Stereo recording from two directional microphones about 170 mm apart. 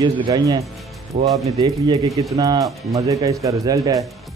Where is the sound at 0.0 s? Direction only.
25° right (ahead or behind).